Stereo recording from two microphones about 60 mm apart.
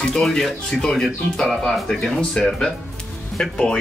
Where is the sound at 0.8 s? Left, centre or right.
Centre.